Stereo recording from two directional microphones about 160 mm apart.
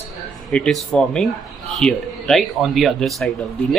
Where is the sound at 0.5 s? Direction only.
5° left (ahead or behind).